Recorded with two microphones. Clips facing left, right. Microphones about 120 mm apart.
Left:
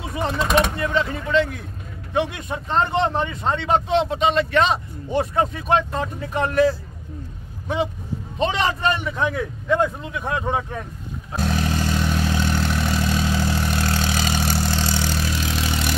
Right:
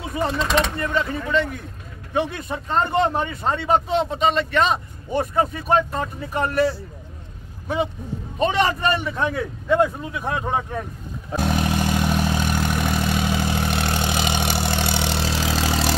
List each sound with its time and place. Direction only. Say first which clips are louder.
0.0 s vehicle: right 1 dB; centre (ahead or behind)
0.4 s speech: left 5 dB; 10° left (ahead or behind)
7.6 s speech: even; centre (ahead or behind)
11.3 s vehicle: right 2 dB; 15° right (ahead or behind)
14.7 s vehicle: even; 60° right (ahead or behind)
15.7 s vehicle: right 3 dB; 35° right (ahead or behind)